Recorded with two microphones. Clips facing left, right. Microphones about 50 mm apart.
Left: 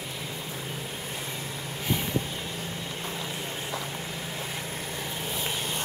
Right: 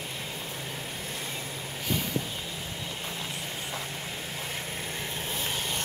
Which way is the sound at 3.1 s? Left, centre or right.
Centre.